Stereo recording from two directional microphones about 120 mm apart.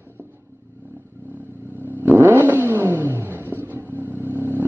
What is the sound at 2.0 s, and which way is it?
Vehicle, 20° right (ahead or behind).